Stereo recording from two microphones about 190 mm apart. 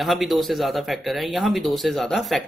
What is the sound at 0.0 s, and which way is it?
A woman's voice, centre (ahead or behind).